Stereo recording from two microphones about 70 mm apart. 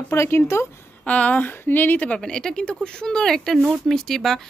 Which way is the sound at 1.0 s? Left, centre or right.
Centre.